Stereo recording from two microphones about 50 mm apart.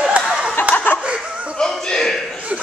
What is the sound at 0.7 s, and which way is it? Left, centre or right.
Snicker, left.